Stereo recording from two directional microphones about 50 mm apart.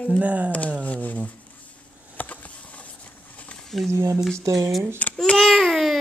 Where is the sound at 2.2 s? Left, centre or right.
Left.